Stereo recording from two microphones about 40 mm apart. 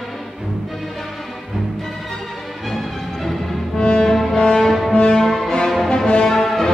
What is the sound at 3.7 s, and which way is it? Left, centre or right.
Music, centre.